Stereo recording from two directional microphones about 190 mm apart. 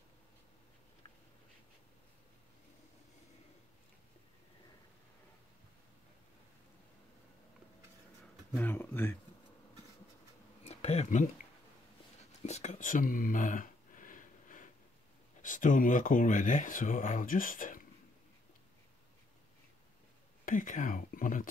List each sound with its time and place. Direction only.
8.5 s speech: 10° left (ahead or behind)
10.6 s insect: 35° left (ahead or behind)
12.4 s a sound: 35° left (ahead or behind)
15.4 s speech: 45° left (ahead or behind)
20.4 s speech: 45° left (ahead or behind)